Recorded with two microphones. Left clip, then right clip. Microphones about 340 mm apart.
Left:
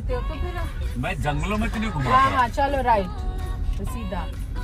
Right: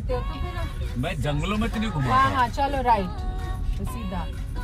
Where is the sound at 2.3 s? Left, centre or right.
Centre.